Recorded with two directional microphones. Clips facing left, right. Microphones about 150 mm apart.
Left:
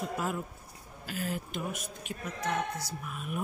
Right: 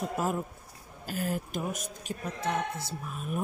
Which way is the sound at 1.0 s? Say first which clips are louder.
Right 3 dB; 45° right (ahead or behind).